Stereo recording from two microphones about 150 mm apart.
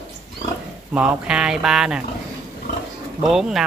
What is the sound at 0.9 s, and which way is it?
Speech, 5° right (ahead or behind).